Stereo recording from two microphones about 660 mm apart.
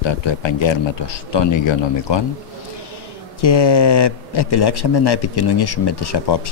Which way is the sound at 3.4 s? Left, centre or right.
Left.